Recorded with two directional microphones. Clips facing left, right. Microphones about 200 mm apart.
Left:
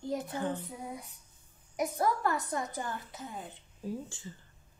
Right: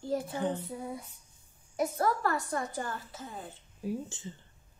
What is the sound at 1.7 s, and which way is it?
A woman's voice, 15° left (ahead or behind).